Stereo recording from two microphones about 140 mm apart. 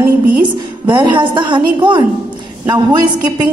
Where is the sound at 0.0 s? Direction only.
10° right (ahead or behind).